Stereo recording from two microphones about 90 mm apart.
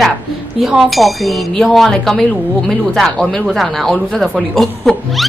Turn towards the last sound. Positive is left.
turn(degrees=0)  # may be behind; listen again after turning